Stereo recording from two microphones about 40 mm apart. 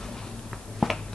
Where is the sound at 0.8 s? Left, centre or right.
Centre.